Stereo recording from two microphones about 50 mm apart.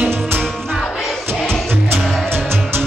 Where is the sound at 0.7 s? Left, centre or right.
Centre.